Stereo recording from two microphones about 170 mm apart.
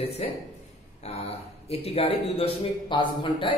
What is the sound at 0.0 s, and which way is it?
A man's voice, 35° left (ahead or behind).